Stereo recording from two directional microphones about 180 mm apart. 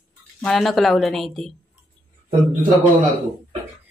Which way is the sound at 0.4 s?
Centre (ahead or behind).